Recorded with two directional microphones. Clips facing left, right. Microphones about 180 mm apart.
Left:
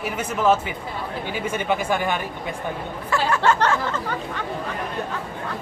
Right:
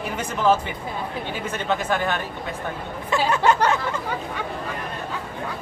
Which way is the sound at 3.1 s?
20° right (ahead or behind).